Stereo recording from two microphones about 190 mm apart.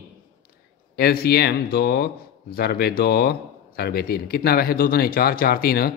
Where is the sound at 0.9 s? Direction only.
55° left (ahead or behind).